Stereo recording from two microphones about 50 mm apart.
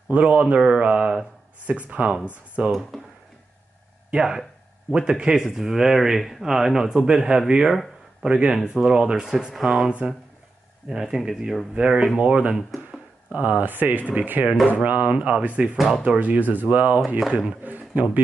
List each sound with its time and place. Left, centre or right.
0.1 s speech: right
2.9 s speech: centre
4.1 s speech: centre; by 17.0 s right
17.6 s a sound: right